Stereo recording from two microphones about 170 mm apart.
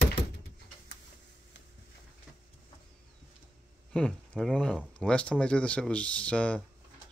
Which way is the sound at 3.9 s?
5° left (ahead or behind).